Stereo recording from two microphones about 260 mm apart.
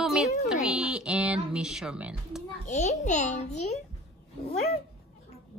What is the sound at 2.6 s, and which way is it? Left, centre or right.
A woman's voice, left.